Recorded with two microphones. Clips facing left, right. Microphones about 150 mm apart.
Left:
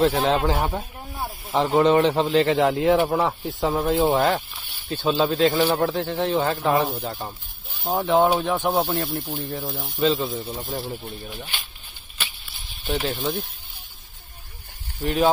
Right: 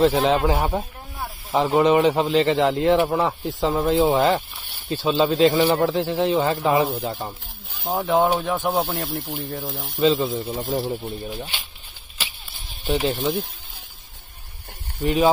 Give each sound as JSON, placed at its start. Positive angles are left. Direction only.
{"t": 0.0, "sound": "speech", "side_deg": 0}
{"t": 10.8, "sound": "speech", "side_deg": -15}
{"t": 13.1, "sound": "speech", "side_deg": 0}
{"t": 15.0, "sound": "speech", "side_deg": 0}